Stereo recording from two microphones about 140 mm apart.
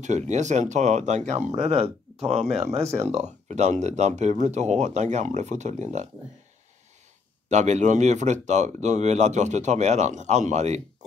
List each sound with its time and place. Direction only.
0.0 s speech: 60° right (ahead or behind)
7.4 s speech: 55° right (ahead or behind)